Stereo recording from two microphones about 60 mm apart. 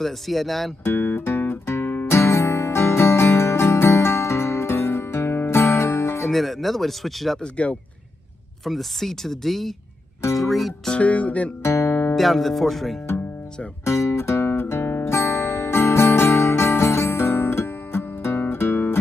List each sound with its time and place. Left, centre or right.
0.0 s speech: centre
0.8 s music: left
6.3 s speech: centre
8.6 s speech: centre
10.9 s music: left
11.6 s music: left
12.2 s speech: centre
13.8 s music: left
15.1 s music: left